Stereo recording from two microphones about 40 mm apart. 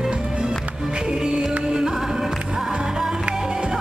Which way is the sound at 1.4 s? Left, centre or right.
Centre.